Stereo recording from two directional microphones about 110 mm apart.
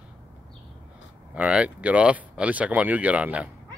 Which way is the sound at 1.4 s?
10° right (ahead or behind).